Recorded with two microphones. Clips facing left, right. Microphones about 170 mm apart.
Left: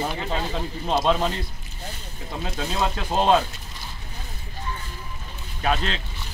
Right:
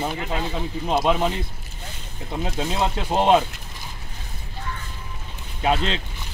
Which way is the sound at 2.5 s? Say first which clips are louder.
Right 1 dB; 20° right (ahead or behind).